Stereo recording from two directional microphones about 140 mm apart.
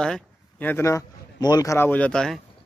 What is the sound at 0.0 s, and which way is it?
A man's voice, 10° left (ahead or behind).